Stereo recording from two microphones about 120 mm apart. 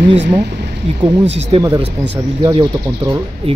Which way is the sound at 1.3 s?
55° right (ahead or behind).